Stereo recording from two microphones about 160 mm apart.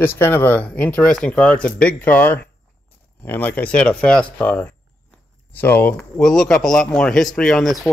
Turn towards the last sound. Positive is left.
turn(degrees=0)  # may be behind; listen again after turning